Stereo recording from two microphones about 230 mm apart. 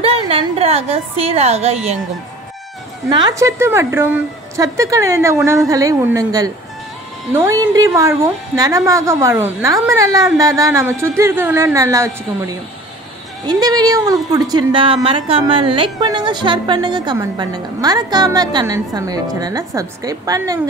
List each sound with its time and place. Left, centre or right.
0.0 s a woman's voice: right
3.1 s a woman's voice: centre
13.5 s a woman's voice: centre